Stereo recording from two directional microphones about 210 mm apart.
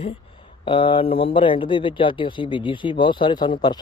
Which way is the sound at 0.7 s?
25° left (ahead or behind).